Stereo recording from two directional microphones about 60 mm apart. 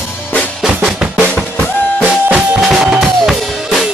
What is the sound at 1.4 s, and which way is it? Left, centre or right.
Music, left.